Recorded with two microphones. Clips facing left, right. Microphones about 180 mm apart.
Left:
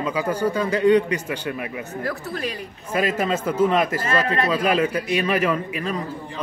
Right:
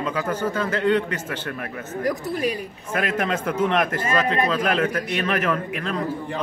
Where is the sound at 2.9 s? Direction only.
10° left (ahead or behind).